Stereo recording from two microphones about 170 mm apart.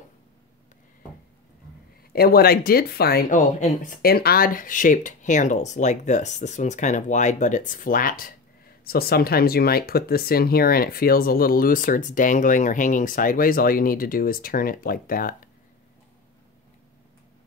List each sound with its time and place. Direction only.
2.1 s speech: 65° left (ahead or behind)
3.3 s speech: 45° left (ahead or behind)